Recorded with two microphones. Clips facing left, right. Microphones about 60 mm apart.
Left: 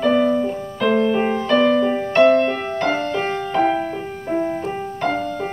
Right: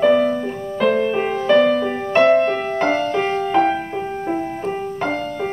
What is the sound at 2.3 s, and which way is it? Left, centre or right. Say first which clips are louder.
Music: right 1 dB; centre.